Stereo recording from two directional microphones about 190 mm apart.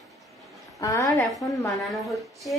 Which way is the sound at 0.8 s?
20° left (ahead or behind).